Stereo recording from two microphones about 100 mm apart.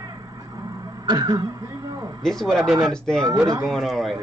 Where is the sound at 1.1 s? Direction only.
40° right (ahead or behind).